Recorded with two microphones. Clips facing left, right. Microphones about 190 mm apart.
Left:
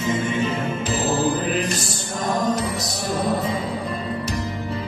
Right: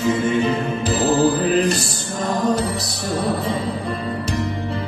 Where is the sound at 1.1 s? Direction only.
35° right (ahead or behind).